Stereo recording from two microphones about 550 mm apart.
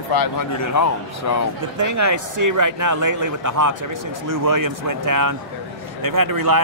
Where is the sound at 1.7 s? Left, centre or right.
Right.